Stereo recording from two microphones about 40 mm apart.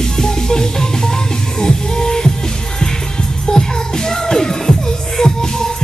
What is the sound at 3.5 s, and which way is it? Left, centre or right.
Music, centre.